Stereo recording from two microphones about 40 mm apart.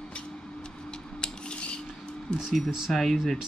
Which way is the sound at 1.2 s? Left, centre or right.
Left.